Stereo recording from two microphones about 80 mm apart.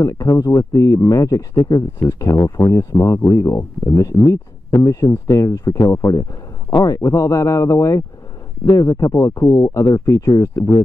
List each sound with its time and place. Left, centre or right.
0.0 s speech: left
3.9 s speech: left